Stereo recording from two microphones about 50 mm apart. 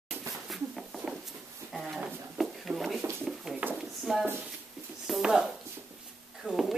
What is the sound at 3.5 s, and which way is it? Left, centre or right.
Pigeon, centre.